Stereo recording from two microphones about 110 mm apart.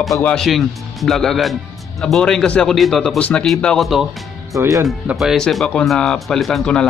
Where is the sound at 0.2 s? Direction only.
5° left (ahead or behind).